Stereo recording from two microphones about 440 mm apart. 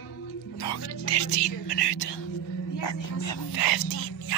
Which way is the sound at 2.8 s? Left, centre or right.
Left.